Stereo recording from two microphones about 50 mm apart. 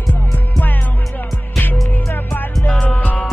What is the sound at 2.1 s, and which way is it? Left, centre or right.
Music, left.